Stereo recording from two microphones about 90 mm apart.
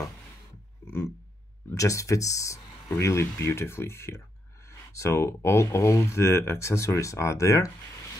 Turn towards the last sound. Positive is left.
turn(degrees=35)  # may be behind; listen again after turning